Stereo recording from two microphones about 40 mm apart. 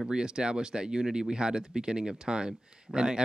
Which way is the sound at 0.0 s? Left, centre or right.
Right.